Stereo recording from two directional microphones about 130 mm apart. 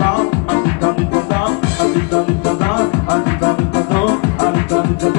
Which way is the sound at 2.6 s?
30° left (ahead or behind).